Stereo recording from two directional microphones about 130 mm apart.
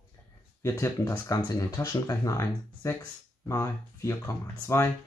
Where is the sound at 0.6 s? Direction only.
20° left (ahead or behind).